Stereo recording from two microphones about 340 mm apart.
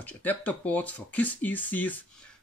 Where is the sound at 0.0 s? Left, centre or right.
Centre.